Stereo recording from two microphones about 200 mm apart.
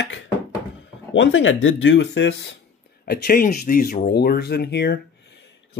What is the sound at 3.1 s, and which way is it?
Speech, 50° left (ahead or behind).